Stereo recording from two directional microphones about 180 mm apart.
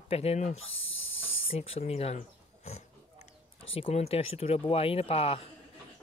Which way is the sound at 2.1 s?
35° left (ahead or behind).